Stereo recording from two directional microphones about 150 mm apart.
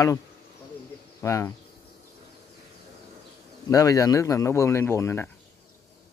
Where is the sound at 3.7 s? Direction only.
20° left (ahead or behind).